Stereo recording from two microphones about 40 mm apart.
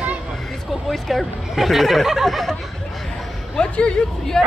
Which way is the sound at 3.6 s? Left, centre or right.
Left.